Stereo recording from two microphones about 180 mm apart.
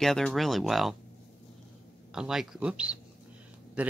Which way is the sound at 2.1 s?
5° right (ahead or behind).